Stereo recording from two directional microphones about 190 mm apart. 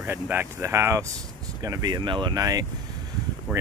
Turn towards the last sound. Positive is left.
turn(degrees=-10)  # may be behind; listen again after turning